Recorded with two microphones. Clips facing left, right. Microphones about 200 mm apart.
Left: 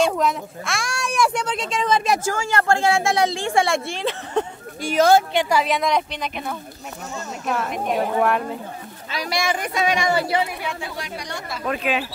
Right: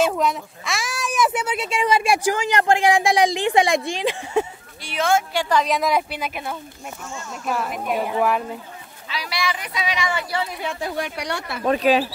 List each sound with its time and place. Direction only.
0.0 s speech: centre (ahead or behind)
4.8 s speech: 40° left (ahead or behind)
5.3 s a woman's voice: 20° left (ahead or behind)
5.6 s speech: centre (ahead or behind)
9.1 s speech: 45° left (ahead or behind)
11.1 s speech: 70° right (ahead or behind)
11.6 s speech: 35° right (ahead or behind)